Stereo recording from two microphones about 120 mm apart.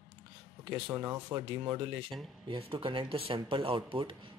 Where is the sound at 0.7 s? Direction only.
40° right (ahead or behind).